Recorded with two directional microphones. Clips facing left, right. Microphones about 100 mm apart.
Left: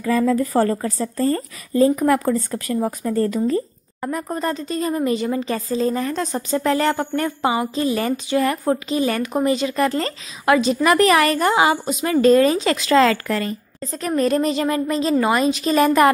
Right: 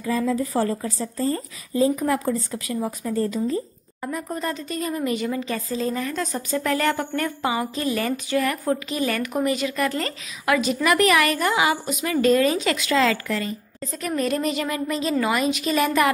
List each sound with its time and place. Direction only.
0.0 s a woman's voice: 65° left (ahead or behind)
2.7 s speech: 50° left (ahead or behind)
4.4 s speech: 35° left (ahead or behind); by 13.6 s 50° left (ahead or behind)
14.0 s speech: 40° left (ahead or behind)